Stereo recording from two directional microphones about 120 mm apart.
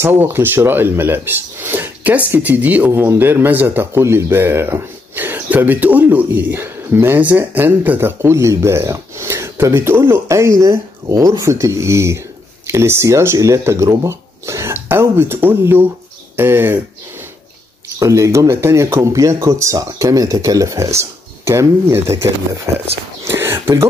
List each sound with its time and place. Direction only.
0.0 s a man's voice: 15° right (ahead or behind)
17.9 s speech: 25° right (ahead or behind)
23.2 s a sound: 20° right (ahead or behind)